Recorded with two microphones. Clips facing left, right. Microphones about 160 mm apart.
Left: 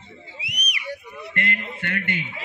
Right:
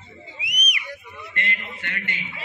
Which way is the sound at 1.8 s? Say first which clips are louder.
Left 6 dB; 55° left (ahead or behind).